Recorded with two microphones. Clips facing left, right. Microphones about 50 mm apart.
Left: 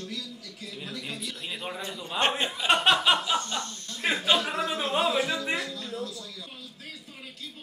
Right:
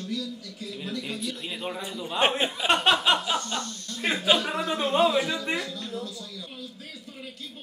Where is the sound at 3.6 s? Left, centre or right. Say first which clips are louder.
Right 1 dB; left.